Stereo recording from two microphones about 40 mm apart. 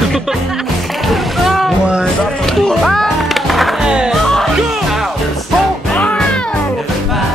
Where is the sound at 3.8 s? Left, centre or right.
Right.